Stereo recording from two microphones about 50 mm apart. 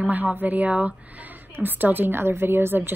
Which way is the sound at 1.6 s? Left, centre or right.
Right.